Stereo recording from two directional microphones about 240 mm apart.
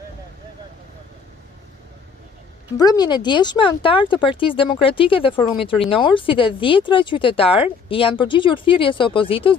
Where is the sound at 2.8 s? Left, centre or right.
Centre.